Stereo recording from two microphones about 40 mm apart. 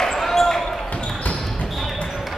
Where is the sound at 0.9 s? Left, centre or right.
Left.